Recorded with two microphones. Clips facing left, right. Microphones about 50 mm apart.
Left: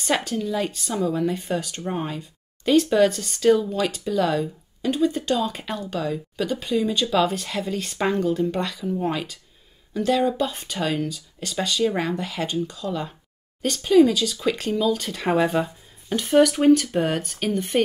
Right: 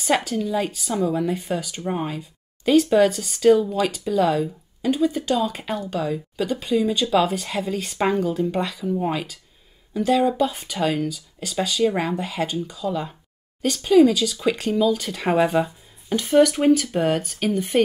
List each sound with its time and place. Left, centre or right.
0.0 s speech: centre